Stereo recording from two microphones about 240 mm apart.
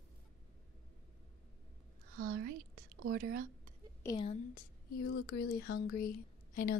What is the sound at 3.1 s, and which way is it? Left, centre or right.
Speech, right.